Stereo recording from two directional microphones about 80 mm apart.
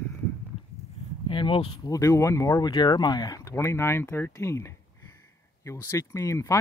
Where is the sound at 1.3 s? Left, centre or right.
Left.